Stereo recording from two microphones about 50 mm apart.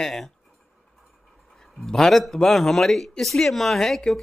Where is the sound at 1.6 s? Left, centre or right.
Centre.